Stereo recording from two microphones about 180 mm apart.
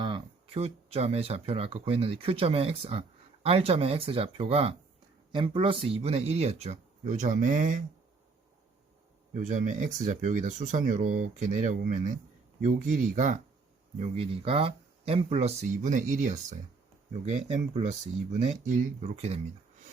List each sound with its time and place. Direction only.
0.0 s speech: 30° right (ahead or behind); by 7.8 s 45° right (ahead or behind)
9.3 s speech: 45° right (ahead or behind)
14.0 s speech: 30° right (ahead or behind)